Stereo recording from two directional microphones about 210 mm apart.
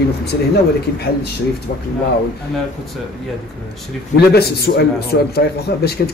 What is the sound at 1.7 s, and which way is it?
Speech, 45° left (ahead or behind).